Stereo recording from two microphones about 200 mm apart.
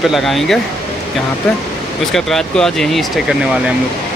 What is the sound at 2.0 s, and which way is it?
Speech, centre (ahead or behind).